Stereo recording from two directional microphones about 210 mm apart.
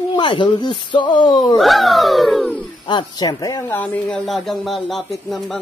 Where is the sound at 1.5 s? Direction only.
Centre (ahead or behind).